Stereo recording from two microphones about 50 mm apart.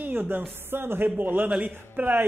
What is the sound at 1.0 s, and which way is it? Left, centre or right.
A man's voice, right.